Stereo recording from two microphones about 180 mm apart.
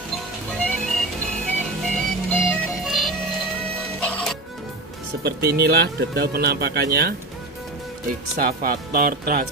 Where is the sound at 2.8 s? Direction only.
Centre (ahead or behind).